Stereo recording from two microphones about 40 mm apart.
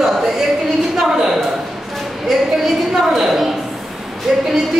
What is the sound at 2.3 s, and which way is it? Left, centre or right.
A woman's voice, centre.